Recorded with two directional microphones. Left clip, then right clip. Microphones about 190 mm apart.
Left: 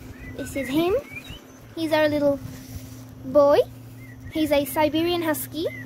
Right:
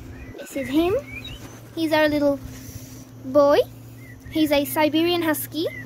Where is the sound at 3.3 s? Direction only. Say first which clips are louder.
Even; 5° left (ahead or behind).